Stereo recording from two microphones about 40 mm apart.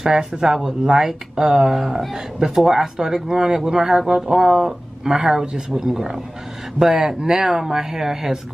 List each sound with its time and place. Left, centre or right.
0.0 s speech: centre